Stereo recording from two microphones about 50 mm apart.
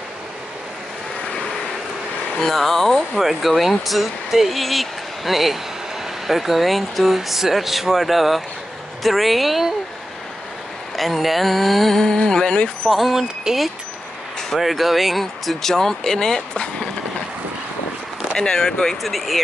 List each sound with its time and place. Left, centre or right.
2.4 s speech: centre
11.0 s speech: centre
12.0 s speech: centre
12.9 s speech: centre
13.2 s speech: centre
14.5 s speech: centre
18.4 s speech: centre